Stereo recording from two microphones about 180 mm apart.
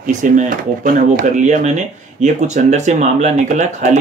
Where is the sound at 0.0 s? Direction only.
50° right (ahead or behind).